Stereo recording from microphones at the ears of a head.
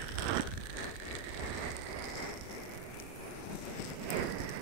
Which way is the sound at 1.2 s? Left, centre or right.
Right.